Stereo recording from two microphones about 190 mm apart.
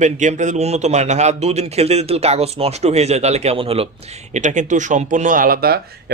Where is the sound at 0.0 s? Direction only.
40° right (ahead or behind).